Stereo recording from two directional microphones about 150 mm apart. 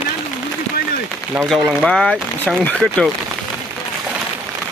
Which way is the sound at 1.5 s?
Centre (ahead or behind).